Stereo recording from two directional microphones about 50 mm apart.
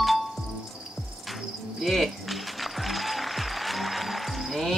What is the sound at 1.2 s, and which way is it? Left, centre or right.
Cricket, centre.